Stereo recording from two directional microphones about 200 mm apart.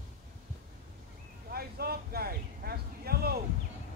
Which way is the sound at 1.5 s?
50° right (ahead or behind).